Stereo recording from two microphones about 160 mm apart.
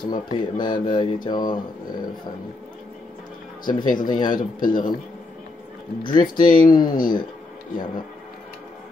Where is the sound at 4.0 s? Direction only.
25° left (ahead or behind).